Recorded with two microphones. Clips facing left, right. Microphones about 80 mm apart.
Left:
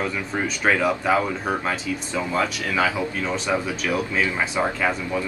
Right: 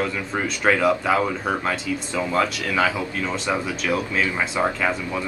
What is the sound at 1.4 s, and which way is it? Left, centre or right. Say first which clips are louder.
Speech: right 1 dB; centre.